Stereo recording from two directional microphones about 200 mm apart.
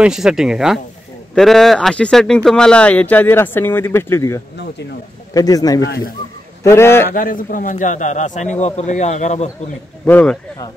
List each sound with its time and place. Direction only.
0.0 s speech: 5° right (ahead or behind); by 5.9 s 20° left (ahead or behind)
5.9 s speech: 50° left (ahead or behind)
6.6 s speech: 15° left (ahead or behind)
7.1 s a man's voice: 45° left (ahead or behind)
10.0 s speech: 5° left (ahead or behind)